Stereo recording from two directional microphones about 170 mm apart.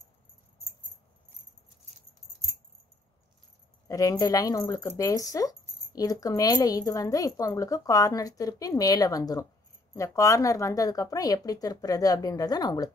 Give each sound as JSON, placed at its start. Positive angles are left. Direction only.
{"t": 3.8, "sound": "a woman's voice", "side_deg": 20}